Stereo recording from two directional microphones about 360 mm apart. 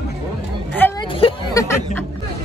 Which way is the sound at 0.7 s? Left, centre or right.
Centre.